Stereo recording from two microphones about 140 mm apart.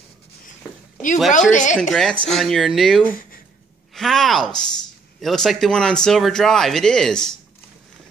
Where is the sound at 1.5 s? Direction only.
65° left (ahead or behind).